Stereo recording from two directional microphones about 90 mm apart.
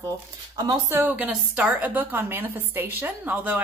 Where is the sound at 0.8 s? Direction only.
25° right (ahead or behind).